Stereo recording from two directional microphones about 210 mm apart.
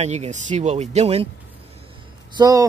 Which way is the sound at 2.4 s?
20° right (ahead or behind).